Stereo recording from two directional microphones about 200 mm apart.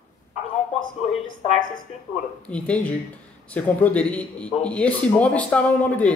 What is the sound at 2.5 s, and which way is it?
A man's voice, 5° left (ahead or behind).